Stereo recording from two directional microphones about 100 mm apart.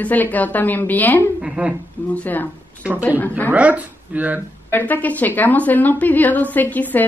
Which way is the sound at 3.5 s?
15° right (ahead or behind).